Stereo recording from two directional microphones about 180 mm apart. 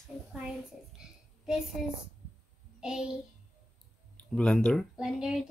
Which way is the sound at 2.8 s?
5° right (ahead or behind).